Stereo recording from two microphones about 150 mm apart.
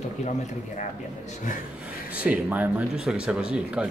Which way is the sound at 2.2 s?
10° right (ahead or behind).